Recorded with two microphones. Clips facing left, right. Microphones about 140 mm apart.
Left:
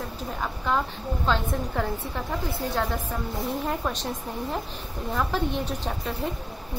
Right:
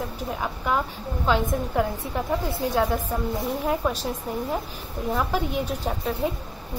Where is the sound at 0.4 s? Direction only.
10° right (ahead or behind).